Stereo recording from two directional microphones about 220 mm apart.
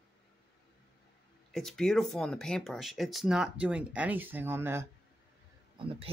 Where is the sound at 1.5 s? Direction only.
Centre (ahead or behind).